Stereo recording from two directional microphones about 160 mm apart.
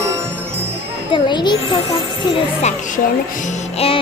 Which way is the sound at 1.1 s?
30° left (ahead or behind).